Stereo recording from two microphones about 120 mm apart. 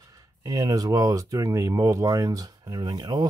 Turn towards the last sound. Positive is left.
turn(degrees=-35)  # may be behind; listen again after turning